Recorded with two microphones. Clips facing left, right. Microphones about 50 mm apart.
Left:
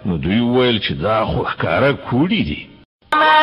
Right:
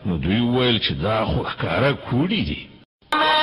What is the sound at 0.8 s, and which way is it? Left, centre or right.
Speech, left.